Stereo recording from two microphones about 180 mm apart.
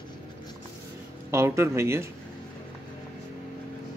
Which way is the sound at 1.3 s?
15° right (ahead or behind).